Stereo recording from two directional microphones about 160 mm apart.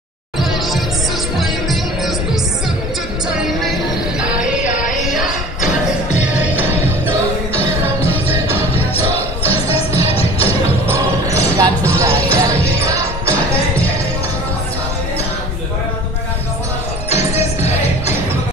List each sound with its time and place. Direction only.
0.4 s music: centre (ahead or behind)
3.3 s music: centre (ahead or behind)
4.6 s music: 50° left (ahead or behind)
5.0 s music: centre (ahead or behind)
6.4 s music: 10° right (ahead or behind)
9.5 s music: 40° left (ahead or behind)
10.9 s music: 20° right (ahead or behind)
17.1 s music: 40° left (ahead or behind)